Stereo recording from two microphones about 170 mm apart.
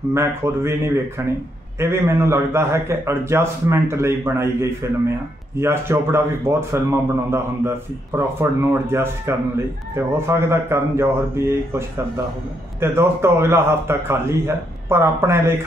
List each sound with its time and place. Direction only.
0.1 s a man's voice: 15° right (ahead or behind)
1.8 s a man's voice: 15° right (ahead or behind)
12.8 s a man's voice: 15° right (ahead or behind)